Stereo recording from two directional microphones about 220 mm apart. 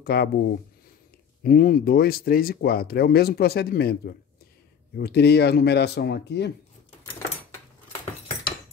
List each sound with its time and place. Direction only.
0.0 s speech: 45° left (ahead or behind)
1.4 s speech: 40° left (ahead or behind)